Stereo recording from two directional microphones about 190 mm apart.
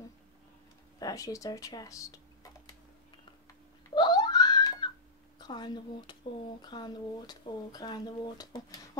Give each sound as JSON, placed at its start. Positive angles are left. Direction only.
{"t": 0.9, "sound": "speech", "side_deg": 20}
{"t": 3.9, "sound": "a sound", "side_deg": 20}
{"t": 5.4, "sound": "speech", "side_deg": 20}